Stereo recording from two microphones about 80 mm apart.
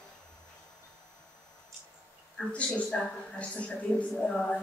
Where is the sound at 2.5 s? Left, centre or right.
Centre.